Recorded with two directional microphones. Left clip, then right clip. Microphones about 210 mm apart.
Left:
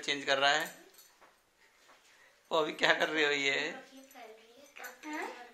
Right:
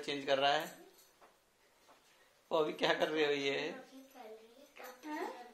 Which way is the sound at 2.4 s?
10° left (ahead or behind).